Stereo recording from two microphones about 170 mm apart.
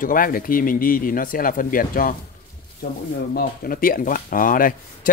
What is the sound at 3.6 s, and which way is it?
Speech, 60° left (ahead or behind).